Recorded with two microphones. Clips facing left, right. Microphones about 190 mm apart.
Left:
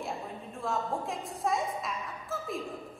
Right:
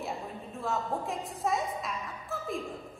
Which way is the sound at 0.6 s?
Centre (ahead or behind).